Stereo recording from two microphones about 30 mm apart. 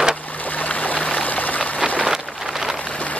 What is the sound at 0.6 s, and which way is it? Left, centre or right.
Stream, left.